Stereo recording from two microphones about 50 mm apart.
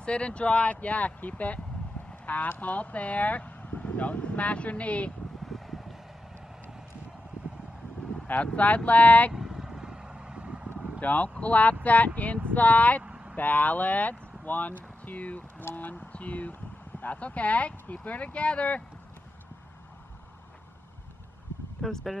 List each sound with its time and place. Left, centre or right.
0.0 s speech: left
5.5 s vehicle: centre
8.5 s speech: left
9.3 s vehicle: centre
11.0 s speech: left
13.0 s vehicle: right
13.4 s speech: left
21.8 s speech: centre